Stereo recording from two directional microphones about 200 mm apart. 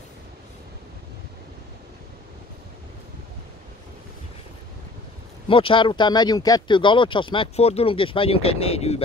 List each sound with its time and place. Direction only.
5.5 s speech: 25° left (ahead or behind)